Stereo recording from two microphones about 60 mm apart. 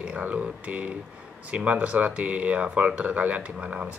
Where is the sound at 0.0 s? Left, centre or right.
Right.